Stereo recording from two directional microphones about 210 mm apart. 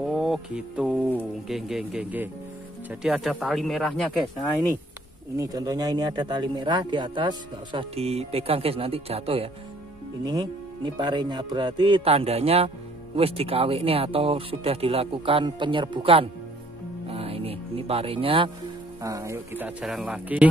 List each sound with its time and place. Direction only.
0.0 s music: centre (ahead or behind)
1.5 s speech: centre (ahead or behind)
5.4 s speech: 15° right (ahead or behind)
10.2 s speech: 15° right (ahead or behind)
18.9 s speech: 15° right (ahead or behind)